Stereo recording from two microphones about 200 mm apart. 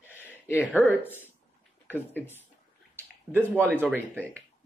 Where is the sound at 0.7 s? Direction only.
10° left (ahead or behind).